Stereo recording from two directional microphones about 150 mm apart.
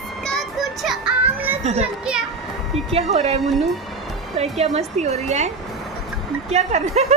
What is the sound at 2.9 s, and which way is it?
Speech, 45° right (ahead or behind).